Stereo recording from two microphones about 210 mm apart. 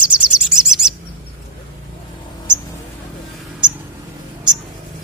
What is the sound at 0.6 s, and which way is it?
Bird, 5° right (ahead or behind).